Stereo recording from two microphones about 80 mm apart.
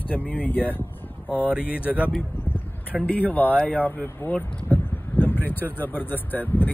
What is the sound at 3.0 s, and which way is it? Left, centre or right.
Speech, left.